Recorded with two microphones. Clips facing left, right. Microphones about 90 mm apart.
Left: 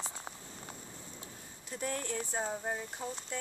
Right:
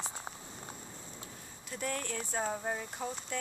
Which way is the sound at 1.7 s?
25° left (ahead or behind).